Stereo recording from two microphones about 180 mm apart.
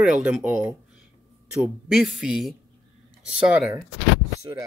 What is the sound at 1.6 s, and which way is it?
Speech, centre (ahead or behind).